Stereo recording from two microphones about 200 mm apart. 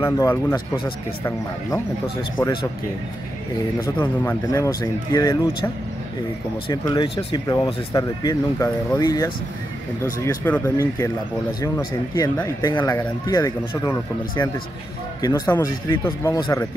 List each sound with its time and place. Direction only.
0.0 s speech: 10° left (ahead or behind)
2.3 s speech: 20° left (ahead or behind)
4.0 s speech: 10° left (ahead or behind)
6.7 s speech: 20° left (ahead or behind)
15.2 s speech: 15° left (ahead or behind)